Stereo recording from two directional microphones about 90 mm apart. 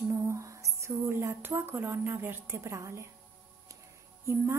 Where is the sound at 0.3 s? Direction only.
35° right (ahead or behind).